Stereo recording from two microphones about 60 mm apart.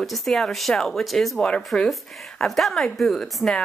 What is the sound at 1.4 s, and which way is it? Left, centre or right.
Speech, centre.